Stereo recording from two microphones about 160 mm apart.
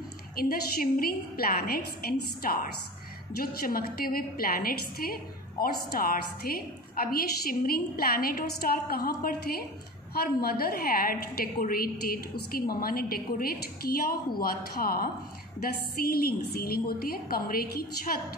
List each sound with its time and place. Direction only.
0.4 s a woman's voice: 65° left (ahead or behind)